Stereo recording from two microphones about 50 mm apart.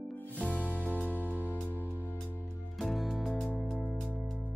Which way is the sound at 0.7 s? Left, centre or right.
Right.